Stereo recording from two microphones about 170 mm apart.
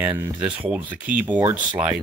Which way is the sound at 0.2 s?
10° right (ahead or behind).